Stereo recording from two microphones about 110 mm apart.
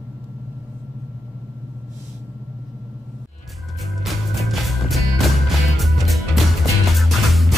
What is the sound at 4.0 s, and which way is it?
Music, centre (ahead or behind).